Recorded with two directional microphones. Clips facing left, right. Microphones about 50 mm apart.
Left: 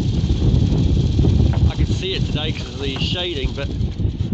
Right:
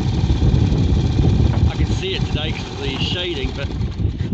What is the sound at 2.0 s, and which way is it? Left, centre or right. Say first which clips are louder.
Speech: right 1 dB; right.